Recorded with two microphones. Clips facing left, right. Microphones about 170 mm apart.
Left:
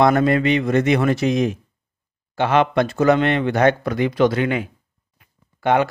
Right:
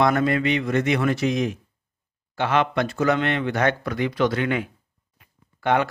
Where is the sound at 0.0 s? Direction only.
30° left (ahead or behind).